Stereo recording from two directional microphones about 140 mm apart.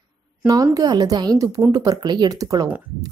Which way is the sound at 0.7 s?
25° right (ahead or behind).